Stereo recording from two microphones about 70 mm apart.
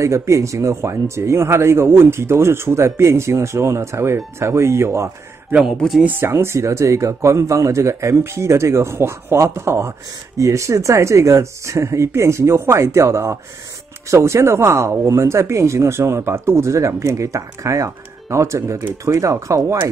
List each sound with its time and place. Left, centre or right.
0.0 s speech: right
6.0 s speech: right
6.3 s a man's voice: right